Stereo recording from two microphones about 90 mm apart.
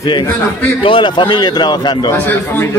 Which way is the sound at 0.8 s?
70° left (ahead or behind).